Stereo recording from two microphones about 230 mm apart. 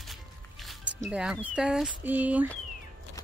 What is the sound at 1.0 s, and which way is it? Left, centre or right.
Speech, centre.